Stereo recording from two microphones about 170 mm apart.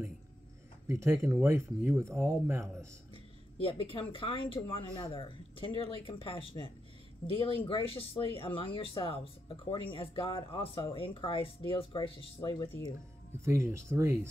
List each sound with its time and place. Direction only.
0.8 s speech: 15° right (ahead or behind)
3.6 s speech: 30° left (ahead or behind)
13.4 s speech: 15° right (ahead or behind)